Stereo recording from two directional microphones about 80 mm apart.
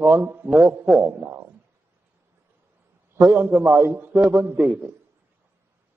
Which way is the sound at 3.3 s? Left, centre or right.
Centre.